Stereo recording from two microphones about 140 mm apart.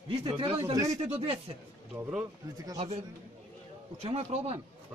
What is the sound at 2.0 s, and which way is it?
Speech, 10° right (ahead or behind).